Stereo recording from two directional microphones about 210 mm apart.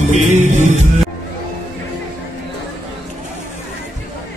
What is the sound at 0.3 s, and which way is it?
Music, 35° right (ahead or behind).